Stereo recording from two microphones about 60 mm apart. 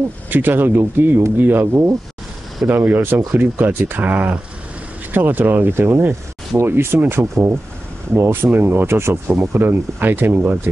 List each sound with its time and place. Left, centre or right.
0.3 s speech: right
9.3 s speech: right